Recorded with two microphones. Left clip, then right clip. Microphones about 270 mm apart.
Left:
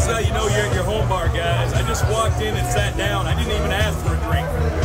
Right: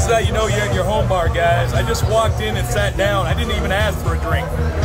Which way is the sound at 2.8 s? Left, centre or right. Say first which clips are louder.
Right 8 dB; centre.